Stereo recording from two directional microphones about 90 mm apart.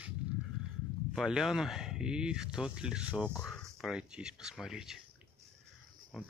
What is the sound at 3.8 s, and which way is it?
Speech, 5° right (ahead or behind).